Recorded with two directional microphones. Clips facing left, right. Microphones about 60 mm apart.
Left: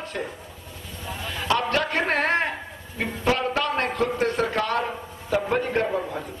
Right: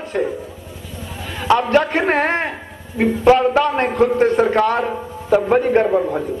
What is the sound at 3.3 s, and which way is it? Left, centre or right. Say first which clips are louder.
A man's voice: right 8 dB; centre.